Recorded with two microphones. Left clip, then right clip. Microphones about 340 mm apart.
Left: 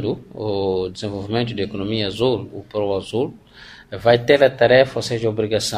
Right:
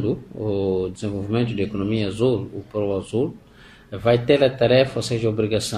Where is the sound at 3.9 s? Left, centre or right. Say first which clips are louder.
Left 3 dB; left.